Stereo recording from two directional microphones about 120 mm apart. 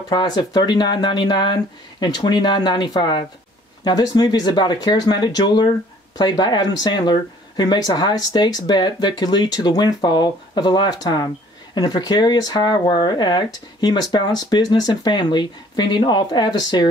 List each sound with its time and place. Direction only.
0.1 s speech: 40° left (ahead or behind)